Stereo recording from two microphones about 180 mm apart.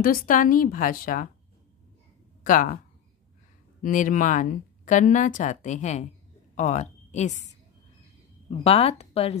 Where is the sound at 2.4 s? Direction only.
50° left (ahead or behind).